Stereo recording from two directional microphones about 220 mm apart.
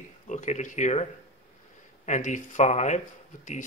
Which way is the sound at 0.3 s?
35° left (ahead or behind).